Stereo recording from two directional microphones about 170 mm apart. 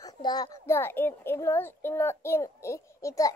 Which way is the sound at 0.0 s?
25° left (ahead or behind).